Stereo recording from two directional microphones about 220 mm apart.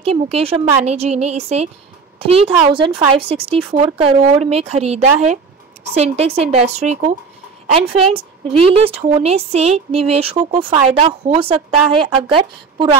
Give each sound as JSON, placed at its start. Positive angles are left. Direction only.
{"t": 0.0, "sound": "a woman's voice", "side_deg": -25}